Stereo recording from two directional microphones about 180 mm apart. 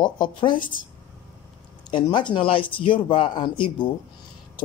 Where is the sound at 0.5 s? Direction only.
50° left (ahead or behind).